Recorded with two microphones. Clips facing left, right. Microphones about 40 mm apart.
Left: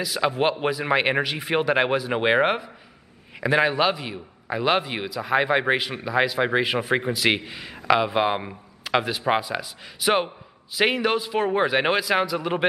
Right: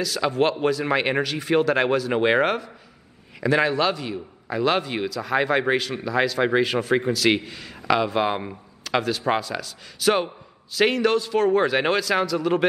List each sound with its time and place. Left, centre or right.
0.0 s a man's voice: centre